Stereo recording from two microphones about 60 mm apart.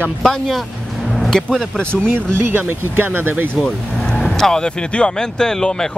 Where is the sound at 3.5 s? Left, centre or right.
Centre.